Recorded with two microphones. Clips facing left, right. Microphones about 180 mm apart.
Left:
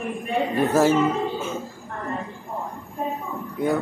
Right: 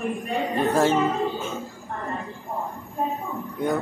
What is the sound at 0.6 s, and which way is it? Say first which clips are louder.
Speech: left 2 dB; 5° left (ahead or behind).